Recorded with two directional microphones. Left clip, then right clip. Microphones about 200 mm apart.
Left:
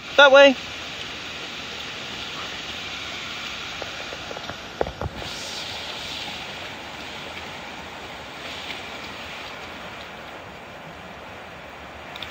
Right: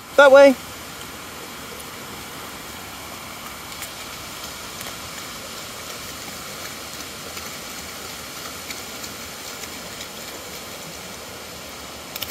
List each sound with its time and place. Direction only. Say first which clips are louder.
0.1 s speech: right 2 dB; 10° right (ahead or behind)